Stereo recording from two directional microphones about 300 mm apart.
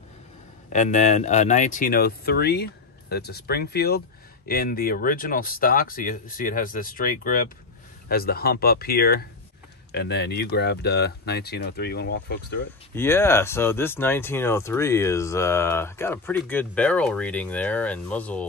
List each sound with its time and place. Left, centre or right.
0.7 s speech: left
12.9 s speech: centre